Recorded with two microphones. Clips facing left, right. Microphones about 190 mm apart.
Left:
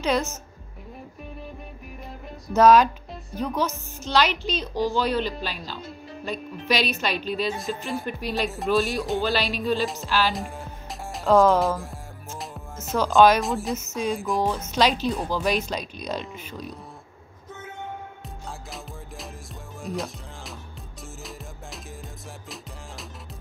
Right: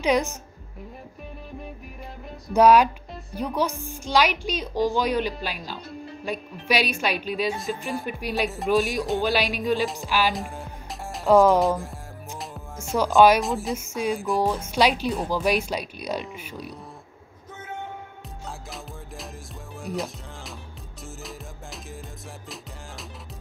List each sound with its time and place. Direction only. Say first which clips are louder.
0.0 s speech: right 2 dB; 15° right (ahead or behind)
2.5 s speech: even; 10° right (ahead or behind)
10.3 s music: even; centre (ahead or behind)
11.2 s speech: right 1 dB; 15° right (ahead or behind)
13.1 s speech: even; 10° right (ahead or behind)
19.8 s music: right 1 dB; centre (ahead or behind)